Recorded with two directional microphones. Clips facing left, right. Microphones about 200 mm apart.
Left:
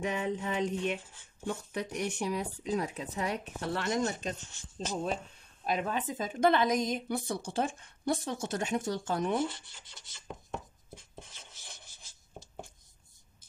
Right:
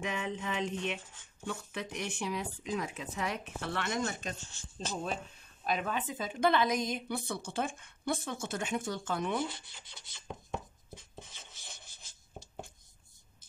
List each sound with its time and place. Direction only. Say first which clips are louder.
0.0 s a woman's voice: left 4 dB; 40° left (ahead or behind)
4.7 s speech: left 3 dB; 20° left (ahead or behind)
5.7 s a woman's voice: left 2 dB; 30° left (ahead or behind)
10.1 s chopping: right 1 dB; centre (ahead or behind)
11.1 s rub: even; 5° left (ahead or behind)